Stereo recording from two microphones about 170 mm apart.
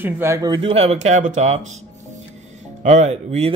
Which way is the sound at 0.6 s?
35° right (ahead or behind).